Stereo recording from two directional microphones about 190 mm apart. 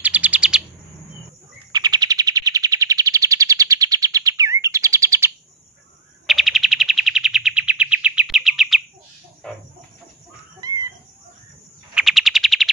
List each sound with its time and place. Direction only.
0.0 s chirp: 5° right (ahead or behind)
1.7 s bird: 20° right (ahead or behind)
6.2 s bird: centre (ahead or behind)
9.4 s chicken: 5° left (ahead or behind)
11.9 s bird: centre (ahead or behind)